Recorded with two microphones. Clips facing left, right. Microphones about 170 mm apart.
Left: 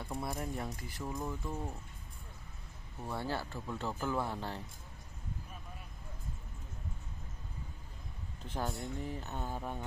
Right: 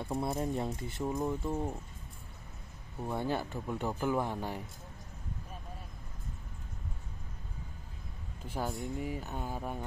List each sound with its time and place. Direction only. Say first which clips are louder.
0.0 s speech: right 6 dB; 25° right (ahead or behind)
3.0 s speech: right 4 dB; 20° right (ahead or behind)
8.5 s speech: right 2 dB; 10° right (ahead or behind)